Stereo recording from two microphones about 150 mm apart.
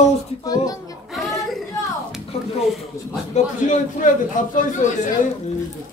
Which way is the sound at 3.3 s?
55° left (ahead or behind).